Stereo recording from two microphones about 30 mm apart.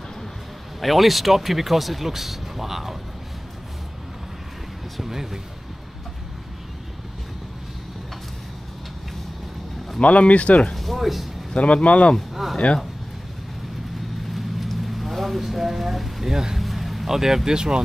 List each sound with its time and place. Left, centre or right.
0.7 s speech: centre
5.0 s speech: centre
10.0 s speech: left
10.7 s a sound: centre
11.0 s speech: centre
11.5 s speech: left
14.3 s a sound: centre
16.5 s vehicle: centre
17.5 s speech: right